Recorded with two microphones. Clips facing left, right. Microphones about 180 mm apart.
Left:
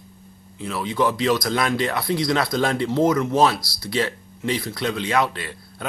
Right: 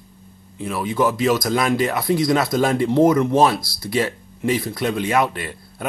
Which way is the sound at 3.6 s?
50° right (ahead or behind).